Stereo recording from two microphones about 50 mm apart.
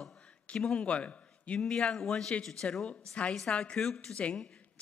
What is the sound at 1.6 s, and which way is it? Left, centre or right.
A woman's voice, centre.